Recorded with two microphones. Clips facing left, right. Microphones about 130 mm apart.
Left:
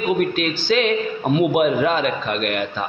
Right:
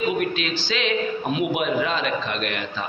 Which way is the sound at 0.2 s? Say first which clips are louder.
Left 5 dB; 50° left (ahead or behind).